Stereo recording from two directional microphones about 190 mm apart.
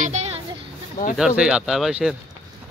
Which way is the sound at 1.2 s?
5° right (ahead or behind).